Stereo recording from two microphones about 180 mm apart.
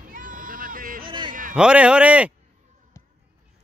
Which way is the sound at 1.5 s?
5° right (ahead or behind).